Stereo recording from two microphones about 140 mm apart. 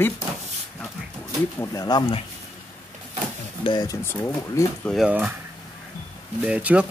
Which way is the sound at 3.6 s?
30° left (ahead or behind).